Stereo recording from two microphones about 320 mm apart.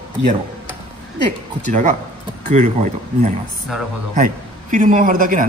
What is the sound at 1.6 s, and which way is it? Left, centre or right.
A man's voice, right.